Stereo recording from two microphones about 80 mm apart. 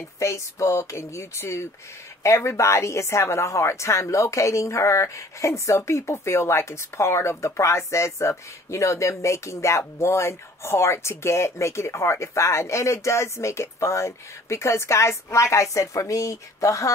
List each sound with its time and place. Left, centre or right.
0.2 s a woman's voice: left